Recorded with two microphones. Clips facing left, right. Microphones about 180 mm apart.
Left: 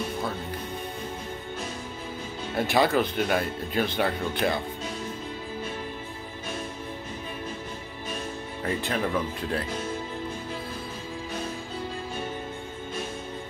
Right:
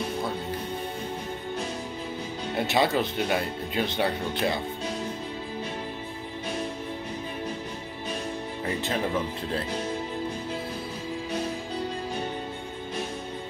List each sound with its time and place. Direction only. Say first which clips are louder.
2.5 s speech: left 2 dB; 20° right (ahead or behind)
8.6 s speech: left 1 dB; 25° right (ahead or behind)